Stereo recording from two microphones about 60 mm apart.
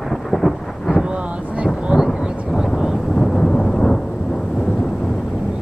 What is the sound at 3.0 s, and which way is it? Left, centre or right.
Thunder, centre.